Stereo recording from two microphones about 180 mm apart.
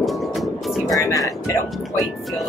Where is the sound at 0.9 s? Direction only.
20° left (ahead or behind).